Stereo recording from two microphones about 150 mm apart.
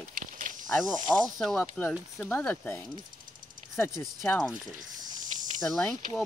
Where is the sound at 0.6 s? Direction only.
Centre (ahead or behind).